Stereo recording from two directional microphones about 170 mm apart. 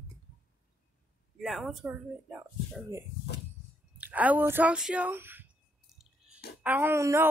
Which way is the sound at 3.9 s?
10° right (ahead or behind).